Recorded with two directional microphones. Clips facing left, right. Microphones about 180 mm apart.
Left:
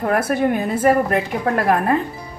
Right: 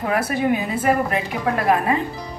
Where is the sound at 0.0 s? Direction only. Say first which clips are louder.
Left 3 dB; 50° left (ahead or behind).